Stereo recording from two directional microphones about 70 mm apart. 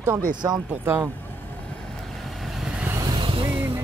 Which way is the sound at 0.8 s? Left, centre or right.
Right.